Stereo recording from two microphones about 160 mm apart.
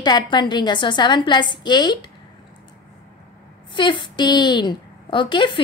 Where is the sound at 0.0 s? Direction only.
30° left (ahead or behind).